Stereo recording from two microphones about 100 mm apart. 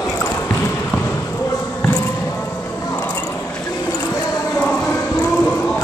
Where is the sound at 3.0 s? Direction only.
15° left (ahead or behind).